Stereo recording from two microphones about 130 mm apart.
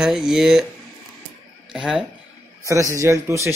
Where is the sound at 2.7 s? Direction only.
25° right (ahead or behind).